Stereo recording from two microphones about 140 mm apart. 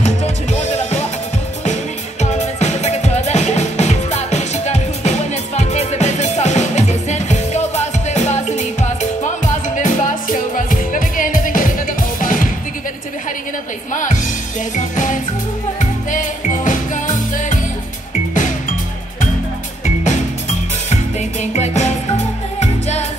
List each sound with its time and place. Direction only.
0.0 s music: 50° left (ahead or behind)
2.6 s music: 55° left (ahead or behind); by 12.4 s 75° left (ahead or behind)
14.8 s music: 65° left (ahead or behind)
19.8 s music: 60° left (ahead or behind)